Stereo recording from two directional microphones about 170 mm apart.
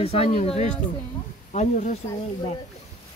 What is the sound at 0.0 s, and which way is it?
Speech, 35° left (ahead or behind).